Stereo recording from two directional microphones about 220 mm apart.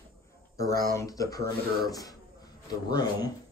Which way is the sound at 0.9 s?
15° left (ahead or behind).